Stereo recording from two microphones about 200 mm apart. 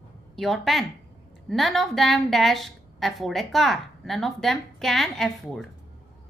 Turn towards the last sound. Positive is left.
turn(degrees=0)  # may be behind; listen again after turning